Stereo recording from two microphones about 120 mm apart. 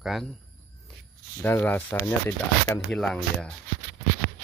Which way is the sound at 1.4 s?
15° left (ahead or behind).